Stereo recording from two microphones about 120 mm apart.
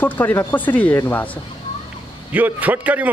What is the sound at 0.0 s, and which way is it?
Speech, 15° left (ahead or behind).